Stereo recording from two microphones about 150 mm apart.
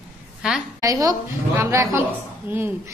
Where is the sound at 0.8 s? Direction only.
25° right (ahead or behind).